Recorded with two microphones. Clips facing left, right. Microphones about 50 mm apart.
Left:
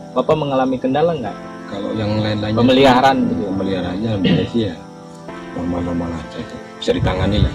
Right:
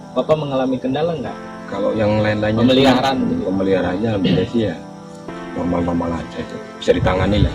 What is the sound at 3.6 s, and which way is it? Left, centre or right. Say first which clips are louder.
Speech: right 3 dB; right.